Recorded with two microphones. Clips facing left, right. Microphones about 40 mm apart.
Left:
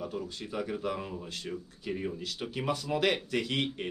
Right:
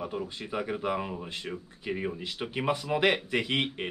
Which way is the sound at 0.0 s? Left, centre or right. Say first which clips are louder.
Right 2 dB; right.